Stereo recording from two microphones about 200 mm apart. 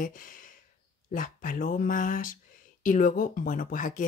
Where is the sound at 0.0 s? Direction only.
40° left (ahead or behind).